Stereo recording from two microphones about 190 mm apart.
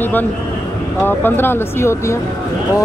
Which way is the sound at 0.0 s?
10° left (ahead or behind).